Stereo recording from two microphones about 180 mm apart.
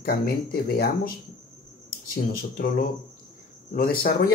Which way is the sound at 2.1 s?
50° left (ahead or behind).